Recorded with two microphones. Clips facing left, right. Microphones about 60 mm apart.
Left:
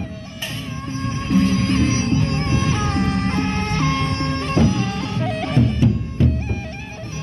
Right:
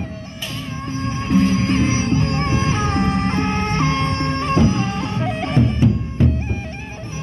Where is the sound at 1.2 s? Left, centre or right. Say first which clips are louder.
Right 1 dB; right.